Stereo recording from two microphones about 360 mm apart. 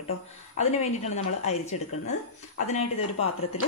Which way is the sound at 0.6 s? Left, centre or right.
Centre.